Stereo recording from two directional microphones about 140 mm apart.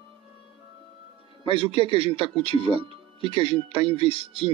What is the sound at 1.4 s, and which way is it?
Speech, 40° left (ahead or behind).